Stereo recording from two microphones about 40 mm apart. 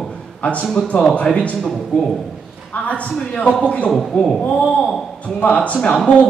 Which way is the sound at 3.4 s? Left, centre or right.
Left.